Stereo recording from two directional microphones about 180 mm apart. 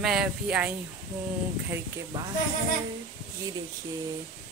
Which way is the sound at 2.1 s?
20° right (ahead or behind).